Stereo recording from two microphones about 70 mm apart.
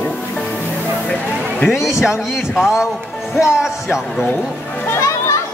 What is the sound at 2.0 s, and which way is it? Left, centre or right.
A man's voice, centre.